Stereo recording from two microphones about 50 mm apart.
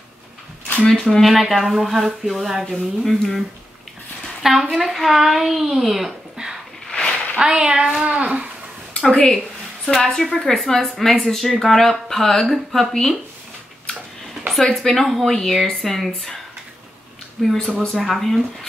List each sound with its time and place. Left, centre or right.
0.8 s a child's voice: centre
6.9 s a sound: centre
7.3 s speech: centre
8.0 s a sound: right
9.0 s speech: centre
14.8 s speech: centre
17.4 s speech: centre